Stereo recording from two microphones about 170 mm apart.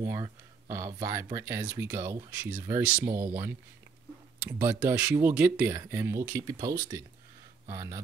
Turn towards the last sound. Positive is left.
turn(degrees=-20)  # may be behind; listen again after turning